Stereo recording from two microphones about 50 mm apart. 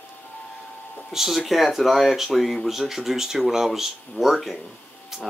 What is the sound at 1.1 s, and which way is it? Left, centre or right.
Speech, centre.